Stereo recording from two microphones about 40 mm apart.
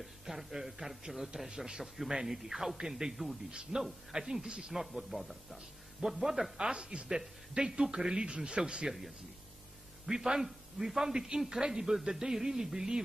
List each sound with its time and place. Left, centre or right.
0.0 s a man's voice: centre
4.7 s speech: centre
6.0 s a man's voice: centre
10.0 s a man's voice: centre